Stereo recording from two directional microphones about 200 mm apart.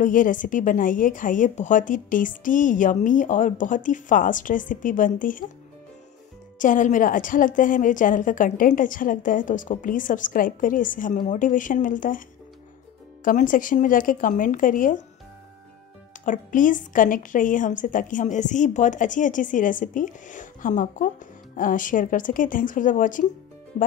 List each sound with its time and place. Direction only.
0.0 s a woman's voice: 40° left (ahead or behind)
6.6 s a woman's voice: 40° left (ahead or behind)
13.2 s a woman's voice: 40° left (ahead or behind)
16.3 s a woman's voice: 40° left (ahead or behind)